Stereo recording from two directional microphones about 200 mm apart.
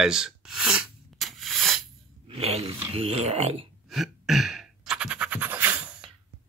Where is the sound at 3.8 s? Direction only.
Centre (ahead or behind).